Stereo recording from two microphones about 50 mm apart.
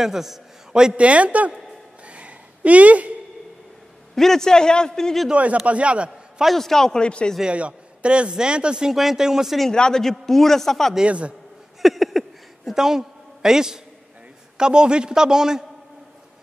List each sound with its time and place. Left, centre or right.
0.0 s a man's voice: centre
0.9 s speech: right
2.0 s a sound: right
4.1 s a man's voice: centre
5.3 s a man's voice: right
6.4 s a man's voice: centre
7.4 s speech: right
8.9 s a man's voice: centre
9.8 s a man's voice: centre
11.1 s speech: right
11.8 s a sound: centre
14.6 s a man's voice: centre